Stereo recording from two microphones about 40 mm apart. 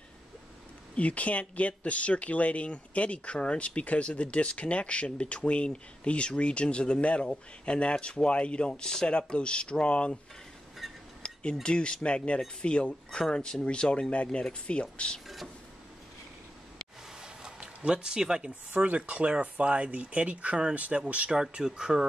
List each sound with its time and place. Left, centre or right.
0.9 s speech: left
10.8 s cutlery: centre
11.6 s speech: left
17.2 s a sound: right
18.5 s speech: right
21.3 s speech: centre